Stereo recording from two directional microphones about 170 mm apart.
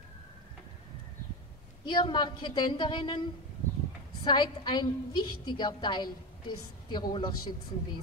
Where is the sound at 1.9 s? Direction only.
25° left (ahead or behind).